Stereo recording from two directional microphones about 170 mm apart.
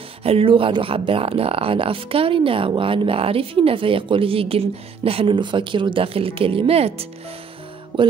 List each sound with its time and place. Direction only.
0.2 s speech: 35° right (ahead or behind)
7.9 s music: 30° right (ahead or behind)